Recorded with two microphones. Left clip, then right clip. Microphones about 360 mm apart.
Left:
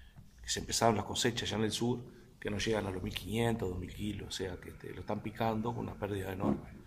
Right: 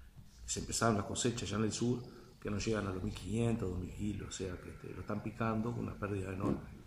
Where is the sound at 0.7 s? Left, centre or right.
Left.